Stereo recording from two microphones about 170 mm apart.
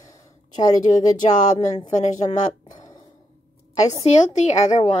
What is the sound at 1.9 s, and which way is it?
Speech, 45° left (ahead or behind).